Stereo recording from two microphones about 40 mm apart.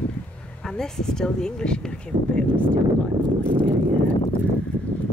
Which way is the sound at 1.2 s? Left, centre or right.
Centre.